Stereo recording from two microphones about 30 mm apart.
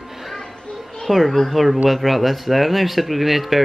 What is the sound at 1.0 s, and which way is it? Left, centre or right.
Speech, centre.